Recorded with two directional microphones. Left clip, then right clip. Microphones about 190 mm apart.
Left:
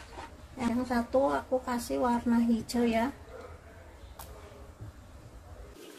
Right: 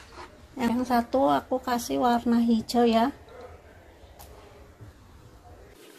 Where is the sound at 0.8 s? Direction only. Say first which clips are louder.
Right 4 dB; 40° right (ahead or behind).